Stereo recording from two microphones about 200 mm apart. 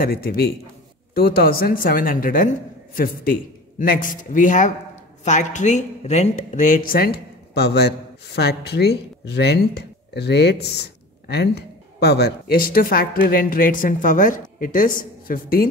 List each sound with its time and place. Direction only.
0.0 s a man's voice: 50° left (ahead or behind)